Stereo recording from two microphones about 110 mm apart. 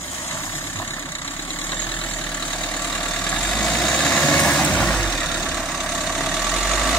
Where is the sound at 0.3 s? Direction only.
20° left (ahead or behind).